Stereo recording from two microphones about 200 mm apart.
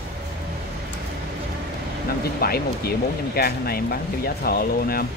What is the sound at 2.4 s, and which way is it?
Speech, 50° left (ahead or behind).